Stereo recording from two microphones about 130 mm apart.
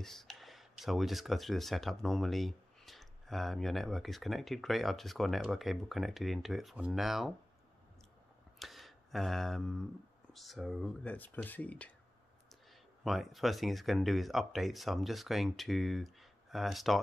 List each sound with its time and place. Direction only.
0.0 s speech: centre (ahead or behind)
8.5 s speech: centre (ahead or behind)
11.1 s speech: 15° left (ahead or behind)
13.0 s speech: centre (ahead or behind)